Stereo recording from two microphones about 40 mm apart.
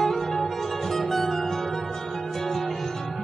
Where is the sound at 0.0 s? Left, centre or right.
Centre.